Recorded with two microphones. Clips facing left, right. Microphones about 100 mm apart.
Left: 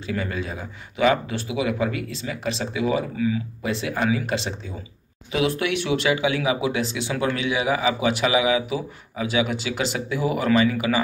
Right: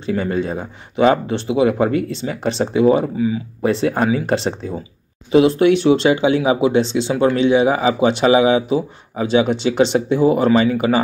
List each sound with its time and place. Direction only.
0.0 s speech: 30° right (ahead or behind)